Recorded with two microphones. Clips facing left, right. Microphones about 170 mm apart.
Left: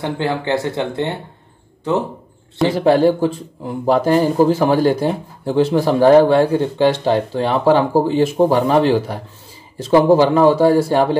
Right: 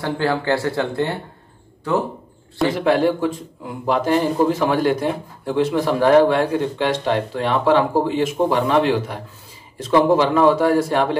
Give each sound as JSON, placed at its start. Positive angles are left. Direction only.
{"t": 0.0, "sound": "speech", "side_deg": 20}
{"t": 2.7, "sound": "speech", "side_deg": 35}